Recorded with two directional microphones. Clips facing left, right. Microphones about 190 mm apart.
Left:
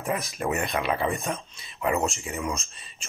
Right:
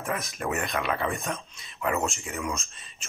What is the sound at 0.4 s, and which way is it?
Speech, 15° left (ahead or behind).